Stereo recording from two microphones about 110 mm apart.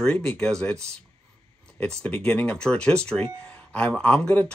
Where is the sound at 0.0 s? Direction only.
10° left (ahead or behind).